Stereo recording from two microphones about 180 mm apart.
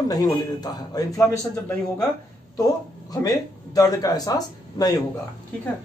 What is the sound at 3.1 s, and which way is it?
Speech, 20° left (ahead or behind).